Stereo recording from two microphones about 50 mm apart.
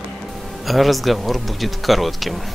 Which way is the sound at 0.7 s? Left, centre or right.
Centre.